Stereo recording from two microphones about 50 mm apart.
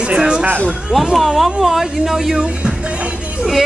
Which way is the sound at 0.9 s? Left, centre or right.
Centre.